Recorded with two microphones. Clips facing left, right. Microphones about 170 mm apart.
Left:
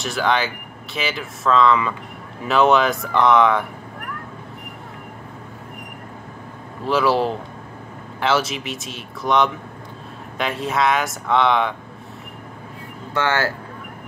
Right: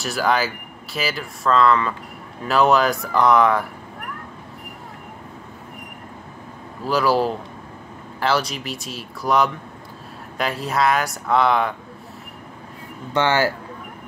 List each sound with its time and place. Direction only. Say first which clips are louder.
0.0 s speech: even; centre (ahead or behind)
6.9 s speech: left 1 dB; centre (ahead or behind)
13.1 s speech: right 2 dB; 15° right (ahead or behind)